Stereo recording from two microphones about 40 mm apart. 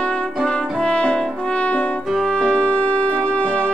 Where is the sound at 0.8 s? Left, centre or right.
Left.